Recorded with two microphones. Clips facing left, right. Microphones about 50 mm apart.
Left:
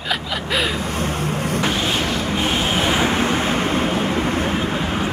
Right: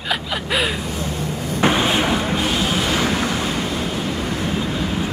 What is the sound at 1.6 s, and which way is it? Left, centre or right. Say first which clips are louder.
Vehicle: right 7 dB; right.